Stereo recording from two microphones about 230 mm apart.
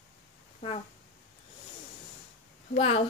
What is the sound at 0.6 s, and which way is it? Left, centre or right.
Speech, left.